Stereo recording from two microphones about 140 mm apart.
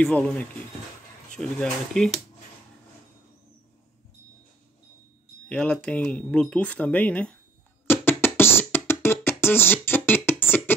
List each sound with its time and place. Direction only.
0.0 s speech: 5° left (ahead or behind)
5.5 s speech: 5° left (ahead or behind)
7.8 s beatboxing: 15° left (ahead or behind)